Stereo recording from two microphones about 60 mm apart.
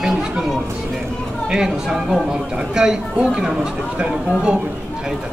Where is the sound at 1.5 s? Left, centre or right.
Centre.